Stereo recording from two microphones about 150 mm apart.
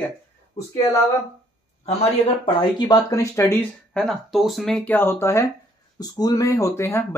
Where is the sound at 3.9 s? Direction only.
5° left (ahead or behind).